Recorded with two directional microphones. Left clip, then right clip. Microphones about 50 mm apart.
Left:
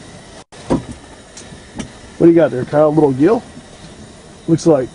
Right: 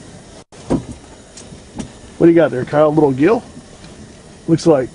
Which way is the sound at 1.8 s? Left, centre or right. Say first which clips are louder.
Even; centre.